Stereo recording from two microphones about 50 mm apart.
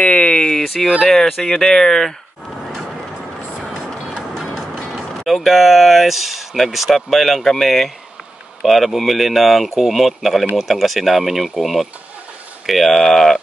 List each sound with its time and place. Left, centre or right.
0.0 s a sound: left
1.0 s speech: centre
4.3 s speech: centre